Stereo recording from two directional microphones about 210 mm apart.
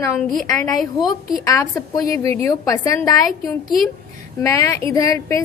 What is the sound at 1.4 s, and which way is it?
A woman's voice, 15° left (ahead or behind).